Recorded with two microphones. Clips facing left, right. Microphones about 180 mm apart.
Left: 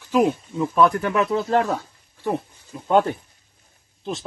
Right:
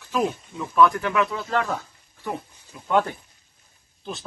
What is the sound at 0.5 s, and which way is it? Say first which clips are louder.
Speech: right 1 dB; 30° left (ahead or behind).